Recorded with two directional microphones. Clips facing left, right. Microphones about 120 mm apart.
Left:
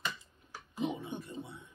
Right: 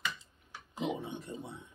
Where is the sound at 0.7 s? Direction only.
20° right (ahead or behind).